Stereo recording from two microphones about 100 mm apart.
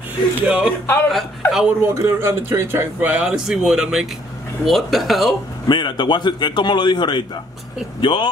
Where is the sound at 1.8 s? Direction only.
25° right (ahead or behind).